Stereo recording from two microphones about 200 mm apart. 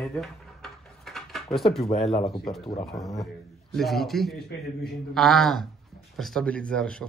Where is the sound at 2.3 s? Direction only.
Centre (ahead or behind).